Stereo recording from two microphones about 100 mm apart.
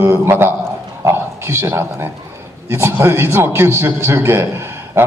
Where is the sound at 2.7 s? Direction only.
25° right (ahead or behind).